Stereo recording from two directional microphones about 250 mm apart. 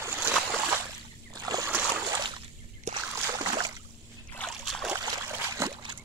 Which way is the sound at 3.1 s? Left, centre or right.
Centre.